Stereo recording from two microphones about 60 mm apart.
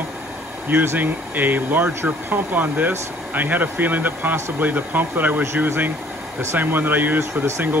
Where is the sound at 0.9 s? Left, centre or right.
Right.